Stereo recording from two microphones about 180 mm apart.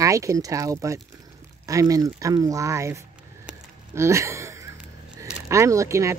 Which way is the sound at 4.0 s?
15° right (ahead or behind).